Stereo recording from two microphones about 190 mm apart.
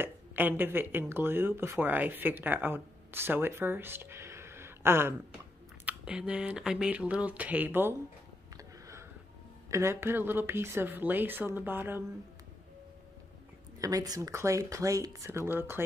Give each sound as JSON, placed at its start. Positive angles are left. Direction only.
{"t": 0.0, "sound": "speech", "side_deg": -10}
{"t": 8.5, "sound": "a sound", "side_deg": -15}
{"t": 9.7, "sound": "speech", "side_deg": -15}
{"t": 13.7, "sound": "speech", "side_deg": -20}